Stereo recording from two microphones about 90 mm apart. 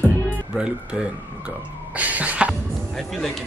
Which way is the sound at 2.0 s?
15° right (ahead or behind).